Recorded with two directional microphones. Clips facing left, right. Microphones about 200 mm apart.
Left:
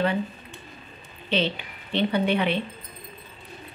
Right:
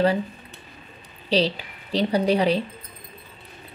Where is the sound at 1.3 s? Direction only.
35° right (ahead or behind).